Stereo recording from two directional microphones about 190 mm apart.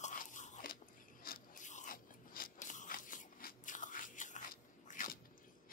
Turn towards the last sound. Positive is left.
turn(degrees=45)  # may be behind; listen again after turning